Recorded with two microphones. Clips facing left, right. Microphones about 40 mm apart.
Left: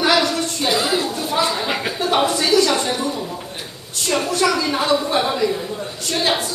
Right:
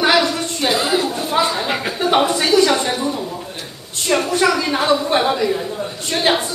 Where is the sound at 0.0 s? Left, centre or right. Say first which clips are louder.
Right 2 dB; right.